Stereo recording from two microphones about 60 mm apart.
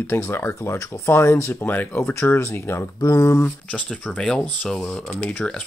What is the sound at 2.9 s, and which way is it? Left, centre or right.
Speech, left.